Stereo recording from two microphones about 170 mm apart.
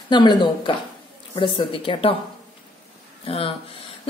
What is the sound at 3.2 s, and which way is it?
Speech, 30° left (ahead or behind).